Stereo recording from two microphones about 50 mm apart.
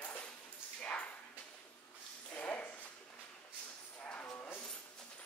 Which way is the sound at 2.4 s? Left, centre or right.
Left.